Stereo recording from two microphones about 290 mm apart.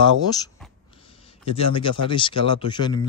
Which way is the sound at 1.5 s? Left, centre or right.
Centre.